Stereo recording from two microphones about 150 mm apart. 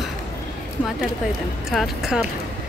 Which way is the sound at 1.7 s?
Centre (ahead or behind).